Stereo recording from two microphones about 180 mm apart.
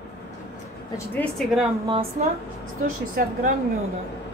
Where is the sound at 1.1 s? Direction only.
Centre (ahead or behind).